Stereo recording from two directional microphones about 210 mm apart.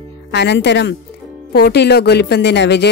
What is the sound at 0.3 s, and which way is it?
Speech, 55° left (ahead or behind).